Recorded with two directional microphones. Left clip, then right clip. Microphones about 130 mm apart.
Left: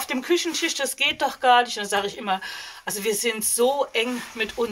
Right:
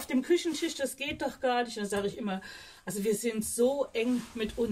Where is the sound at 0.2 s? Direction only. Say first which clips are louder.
Left 5 dB; 40° right (ahead or behind).